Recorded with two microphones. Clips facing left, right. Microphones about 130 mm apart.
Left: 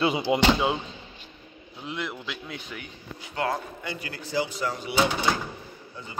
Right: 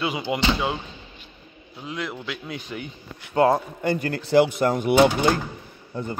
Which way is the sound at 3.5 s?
50° right (ahead or behind).